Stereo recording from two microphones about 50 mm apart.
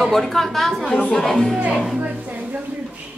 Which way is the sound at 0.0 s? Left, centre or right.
Centre.